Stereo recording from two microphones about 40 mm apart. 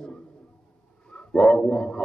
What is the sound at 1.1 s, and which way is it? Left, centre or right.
Dog, centre.